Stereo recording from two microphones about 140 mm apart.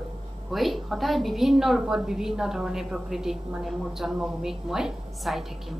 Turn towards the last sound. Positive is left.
turn(degrees=0)  # may be behind; listen again after turning